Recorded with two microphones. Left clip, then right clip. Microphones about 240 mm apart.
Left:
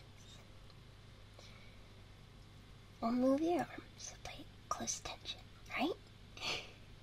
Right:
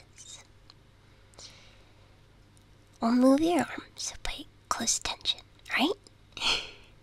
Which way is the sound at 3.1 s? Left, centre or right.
Right.